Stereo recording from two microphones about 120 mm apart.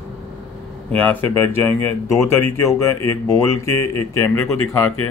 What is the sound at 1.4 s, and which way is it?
Speech, 20° left (ahead or behind).